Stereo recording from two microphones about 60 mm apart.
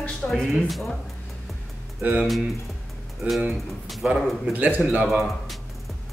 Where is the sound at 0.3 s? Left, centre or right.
Centre.